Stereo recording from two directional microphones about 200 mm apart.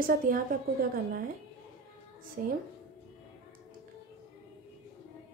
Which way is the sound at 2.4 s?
45° right (ahead or behind).